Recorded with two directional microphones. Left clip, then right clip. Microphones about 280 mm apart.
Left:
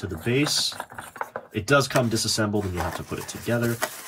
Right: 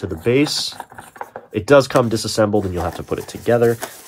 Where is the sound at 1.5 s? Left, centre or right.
Centre.